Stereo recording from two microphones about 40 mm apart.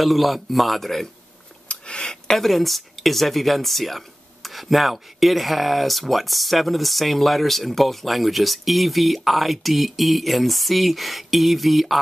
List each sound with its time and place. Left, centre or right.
0.0 s speech: centre
1.7 s a sound: left
2.3 s speech: centre